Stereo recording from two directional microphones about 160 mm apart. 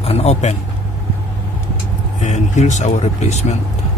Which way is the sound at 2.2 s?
50° left (ahead or behind).